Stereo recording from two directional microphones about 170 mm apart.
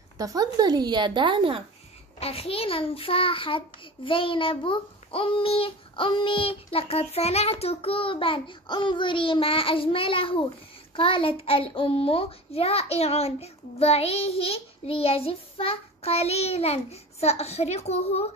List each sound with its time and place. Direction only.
0.2 s speech: 20° right (ahead or behind)
2.1 s a child's voice: 35° left (ahead or behind)